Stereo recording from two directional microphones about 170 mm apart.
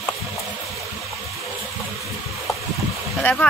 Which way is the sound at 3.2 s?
5° left (ahead or behind).